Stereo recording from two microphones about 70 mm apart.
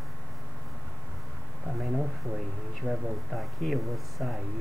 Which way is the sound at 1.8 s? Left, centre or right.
Centre.